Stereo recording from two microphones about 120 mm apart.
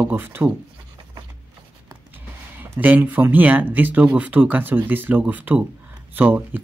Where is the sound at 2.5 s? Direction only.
15° right (ahead or behind).